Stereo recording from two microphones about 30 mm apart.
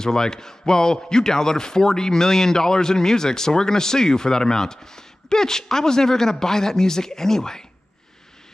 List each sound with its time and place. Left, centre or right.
0.0 s speech: left